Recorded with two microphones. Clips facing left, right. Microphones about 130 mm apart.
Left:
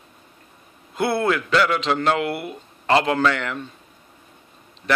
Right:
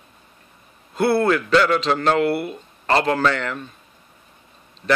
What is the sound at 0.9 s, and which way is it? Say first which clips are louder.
A man's voice: right 3 dB; 15° left (ahead or behind).